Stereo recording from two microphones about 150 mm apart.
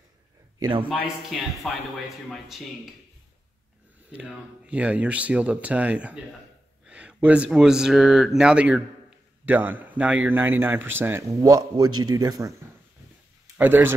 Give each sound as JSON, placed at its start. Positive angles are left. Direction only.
{"t": 0.6, "sound": "speech", "side_deg": -30}
{"t": 0.8, "sound": "speech", "side_deg": -5}
{"t": 4.1, "sound": "speech", "side_deg": -5}
{"t": 13.6, "sound": "speech", "side_deg": -15}